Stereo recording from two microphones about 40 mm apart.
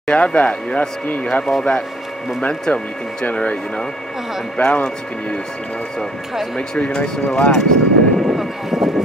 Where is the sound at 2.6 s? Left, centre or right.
Left.